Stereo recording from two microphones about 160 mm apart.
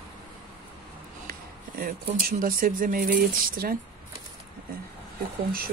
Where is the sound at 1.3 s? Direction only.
65° right (ahead or behind).